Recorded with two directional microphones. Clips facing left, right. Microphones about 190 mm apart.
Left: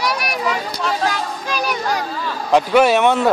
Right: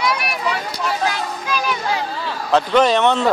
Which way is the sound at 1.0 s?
40° left (ahead or behind).